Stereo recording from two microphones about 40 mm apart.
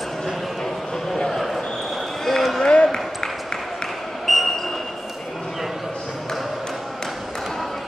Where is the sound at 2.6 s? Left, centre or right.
Centre.